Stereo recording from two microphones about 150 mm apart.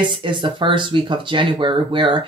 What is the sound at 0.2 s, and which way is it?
Speech, 35° right (ahead or behind).